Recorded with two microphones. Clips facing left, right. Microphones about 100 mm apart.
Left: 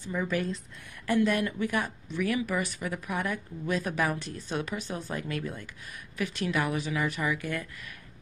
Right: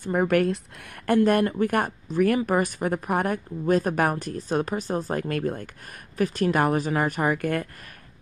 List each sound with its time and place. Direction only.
0.0 s speech: 60° right (ahead or behind)
1.0 s a woman's voice: 55° right (ahead or behind)